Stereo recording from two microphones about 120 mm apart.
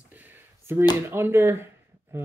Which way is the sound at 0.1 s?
15° right (ahead or behind).